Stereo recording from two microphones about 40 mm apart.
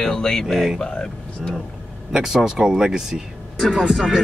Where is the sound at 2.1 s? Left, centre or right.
Centre.